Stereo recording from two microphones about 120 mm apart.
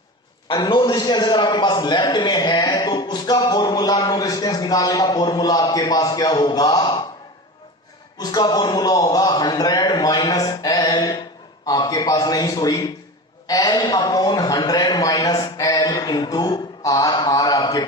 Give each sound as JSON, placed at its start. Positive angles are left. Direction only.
{"t": 0.5, "sound": "a man's voice", "side_deg": 40}
{"t": 8.2, "sound": "a man's voice", "side_deg": 35}